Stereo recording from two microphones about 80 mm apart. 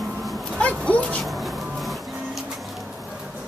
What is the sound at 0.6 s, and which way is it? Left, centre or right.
Dog, centre.